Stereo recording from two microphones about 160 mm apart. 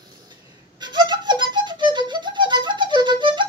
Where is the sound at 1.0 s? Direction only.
30° right (ahead or behind).